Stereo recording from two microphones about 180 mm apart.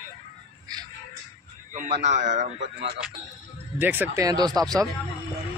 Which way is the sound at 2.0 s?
40° right (ahead or behind).